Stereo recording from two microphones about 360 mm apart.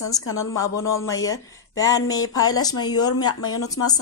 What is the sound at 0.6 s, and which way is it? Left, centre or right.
Speech, centre.